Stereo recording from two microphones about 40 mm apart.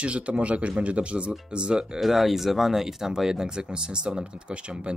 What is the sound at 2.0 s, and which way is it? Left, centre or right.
Speech, centre.